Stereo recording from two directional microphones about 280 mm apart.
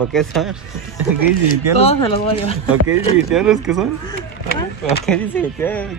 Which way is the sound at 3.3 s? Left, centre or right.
Centre.